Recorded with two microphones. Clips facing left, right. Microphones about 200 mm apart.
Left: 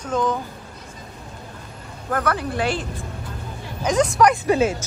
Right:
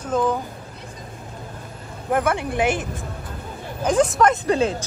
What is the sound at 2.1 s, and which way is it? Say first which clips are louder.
Speech: right 2 dB; 20° right (ahead or behind).